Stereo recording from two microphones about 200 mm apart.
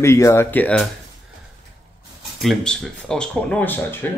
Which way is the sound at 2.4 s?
Centre (ahead or behind).